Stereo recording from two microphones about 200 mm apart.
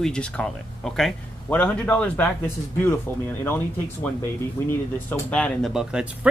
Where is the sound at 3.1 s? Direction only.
20° right (ahead or behind).